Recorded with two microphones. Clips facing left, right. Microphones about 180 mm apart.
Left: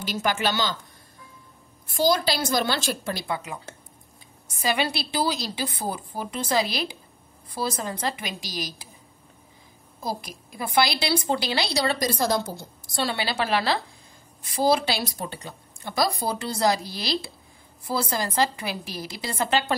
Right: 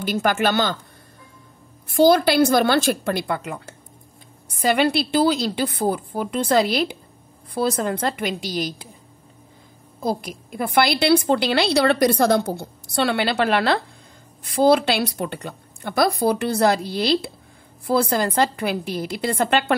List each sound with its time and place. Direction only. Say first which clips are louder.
0.0 s a woman's voice: right 5 dB; 55° right (ahead or behind)
1.9 s a woman's voice: right 7 dB; 60° right (ahead or behind)
10.0 s a woman's voice: right 7 dB; 60° right (ahead or behind)